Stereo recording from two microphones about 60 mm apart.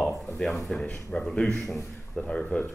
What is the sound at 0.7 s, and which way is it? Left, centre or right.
Speech, centre.